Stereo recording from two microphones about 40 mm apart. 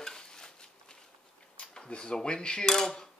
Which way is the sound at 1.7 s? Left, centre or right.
Left.